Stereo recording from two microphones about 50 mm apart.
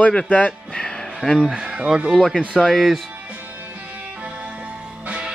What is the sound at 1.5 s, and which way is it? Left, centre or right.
Speech, centre.